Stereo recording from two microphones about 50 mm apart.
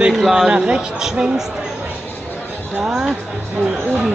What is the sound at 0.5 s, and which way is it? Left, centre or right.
Speech, right.